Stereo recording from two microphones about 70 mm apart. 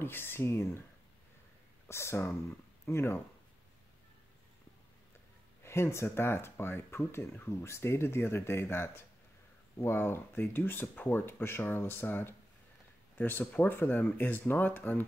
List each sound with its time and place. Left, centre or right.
0.0 s speech: left
1.9 s speech: left
5.6 s speech: left